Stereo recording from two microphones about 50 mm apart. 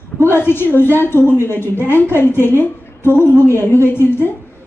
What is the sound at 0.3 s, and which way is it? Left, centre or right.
A woman's voice, left.